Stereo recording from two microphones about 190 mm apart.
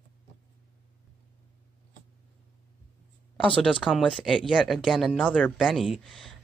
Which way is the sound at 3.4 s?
5° left (ahead or behind).